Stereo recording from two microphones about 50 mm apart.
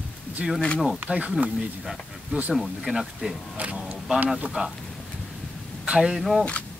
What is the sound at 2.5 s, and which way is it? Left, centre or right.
Speech, centre.